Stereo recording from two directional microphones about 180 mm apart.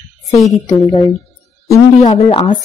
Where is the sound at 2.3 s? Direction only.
30° left (ahead or behind).